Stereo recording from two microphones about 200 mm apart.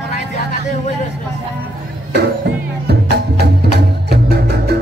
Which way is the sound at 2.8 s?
55° right (ahead or behind).